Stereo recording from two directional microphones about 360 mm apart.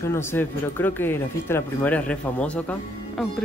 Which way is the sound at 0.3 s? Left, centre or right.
Centre.